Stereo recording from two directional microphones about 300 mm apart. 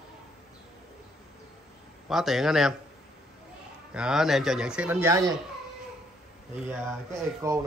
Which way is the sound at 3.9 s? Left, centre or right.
Centre.